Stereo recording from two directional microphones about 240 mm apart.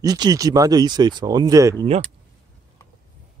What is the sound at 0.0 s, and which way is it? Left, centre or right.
Speech, centre.